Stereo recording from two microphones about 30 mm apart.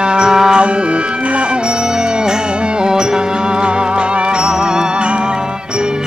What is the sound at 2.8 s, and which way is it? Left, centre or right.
Music, right.